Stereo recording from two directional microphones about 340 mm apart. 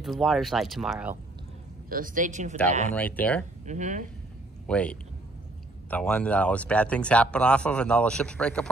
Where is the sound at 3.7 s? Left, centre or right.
Right.